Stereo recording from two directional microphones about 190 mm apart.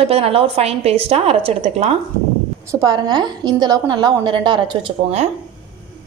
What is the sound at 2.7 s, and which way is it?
A woman's voice, 20° right (ahead or behind).